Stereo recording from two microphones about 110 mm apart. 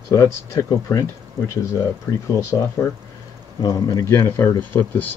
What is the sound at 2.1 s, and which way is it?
Speech, 25° left (ahead or behind).